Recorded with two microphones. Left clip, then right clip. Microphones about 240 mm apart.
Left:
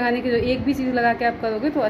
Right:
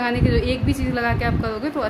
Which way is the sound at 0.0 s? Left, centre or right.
Centre.